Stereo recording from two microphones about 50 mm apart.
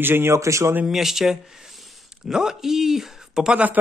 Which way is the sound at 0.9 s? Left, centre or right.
Centre.